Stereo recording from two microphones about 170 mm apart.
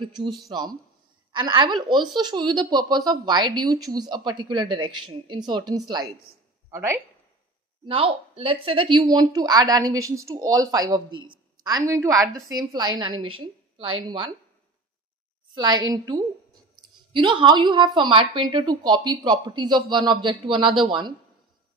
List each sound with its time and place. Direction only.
0.5 s a woman's voice: 25° right (ahead or behind)
7.8 s a woman's voice: 35° right (ahead or behind)
15.5 s a woman's voice: 25° right (ahead or behind)